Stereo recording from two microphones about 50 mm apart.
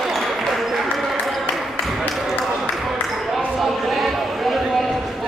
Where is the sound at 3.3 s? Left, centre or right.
Centre.